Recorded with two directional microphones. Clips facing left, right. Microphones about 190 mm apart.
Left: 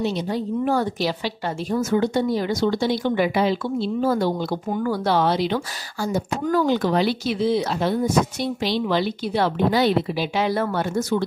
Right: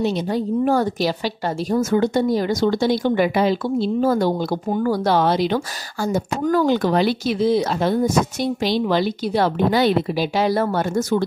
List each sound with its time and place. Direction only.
0.0 s a woman's voice: 45° right (ahead or behind)
10.1 s speech: 40° right (ahead or behind)